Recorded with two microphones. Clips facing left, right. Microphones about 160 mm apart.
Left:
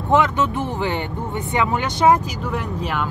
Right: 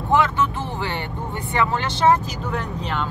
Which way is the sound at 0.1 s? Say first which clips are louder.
Left 2 dB; 20° left (ahead or behind).